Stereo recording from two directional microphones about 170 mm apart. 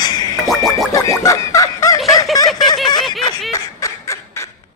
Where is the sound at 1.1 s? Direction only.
20° left (ahead or behind).